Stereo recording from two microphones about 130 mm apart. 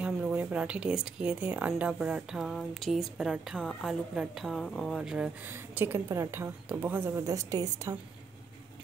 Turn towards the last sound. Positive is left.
turn(degrees=-25)  # may be behind; listen again after turning